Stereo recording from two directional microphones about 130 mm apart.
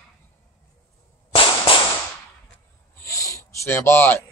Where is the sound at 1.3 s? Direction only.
45° left (ahead or behind).